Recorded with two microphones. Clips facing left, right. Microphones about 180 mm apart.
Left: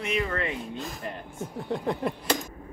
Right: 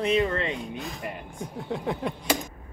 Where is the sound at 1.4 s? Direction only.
Centre (ahead or behind).